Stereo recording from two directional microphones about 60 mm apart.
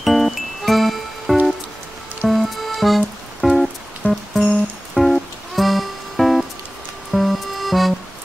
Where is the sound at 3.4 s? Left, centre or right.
Centre.